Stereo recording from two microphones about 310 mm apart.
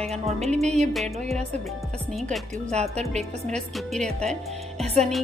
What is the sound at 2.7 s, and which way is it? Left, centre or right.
Speech, right.